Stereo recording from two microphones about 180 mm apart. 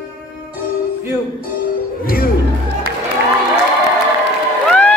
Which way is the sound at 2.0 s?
55° left (ahead or behind).